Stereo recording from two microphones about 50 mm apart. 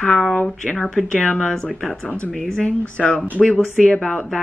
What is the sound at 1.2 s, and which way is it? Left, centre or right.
Speech, left.